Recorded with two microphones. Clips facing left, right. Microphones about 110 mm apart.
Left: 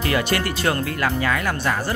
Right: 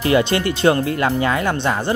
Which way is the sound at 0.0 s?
25° right (ahead or behind).